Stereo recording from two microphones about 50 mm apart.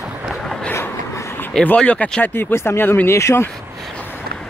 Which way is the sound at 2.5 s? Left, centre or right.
Left.